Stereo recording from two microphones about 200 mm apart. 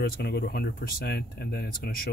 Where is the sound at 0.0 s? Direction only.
55° left (ahead or behind).